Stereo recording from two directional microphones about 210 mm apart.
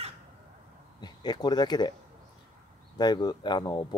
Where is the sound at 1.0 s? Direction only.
20° left (ahead or behind).